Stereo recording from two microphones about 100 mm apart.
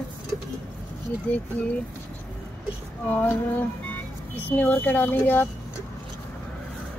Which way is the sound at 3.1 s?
15° left (ahead or behind).